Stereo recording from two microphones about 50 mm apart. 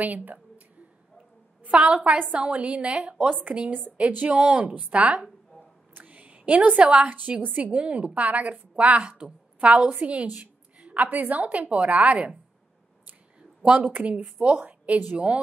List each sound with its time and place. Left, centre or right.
0.0 s speech: right
1.7 s a woman's voice: right
5.9 s a sound: right
6.8 s a woman's voice: right
13.7 s a woman's voice: right
15.1 s a woman's voice: right